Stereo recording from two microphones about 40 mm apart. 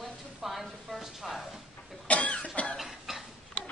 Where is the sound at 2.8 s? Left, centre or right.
Centre.